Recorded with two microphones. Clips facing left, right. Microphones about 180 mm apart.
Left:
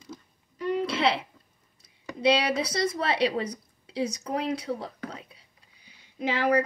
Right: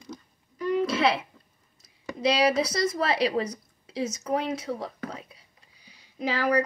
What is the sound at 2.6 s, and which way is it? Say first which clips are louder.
Speech: right 1 dB; 30° left (ahead or behind).